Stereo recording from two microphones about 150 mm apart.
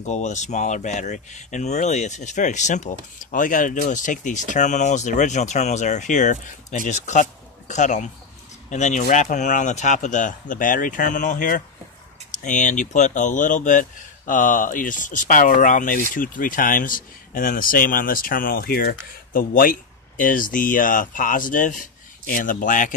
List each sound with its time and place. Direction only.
0.0 s speech: 50° left (ahead or behind)